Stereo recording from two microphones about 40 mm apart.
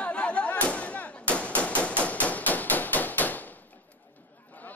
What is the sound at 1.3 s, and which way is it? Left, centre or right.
Hammer, left.